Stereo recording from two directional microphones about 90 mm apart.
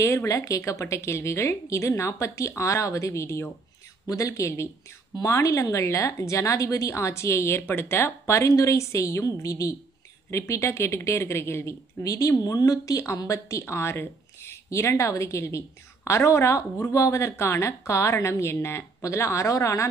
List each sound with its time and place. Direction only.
0.0 s a woman's voice: 35° left (ahead or behind)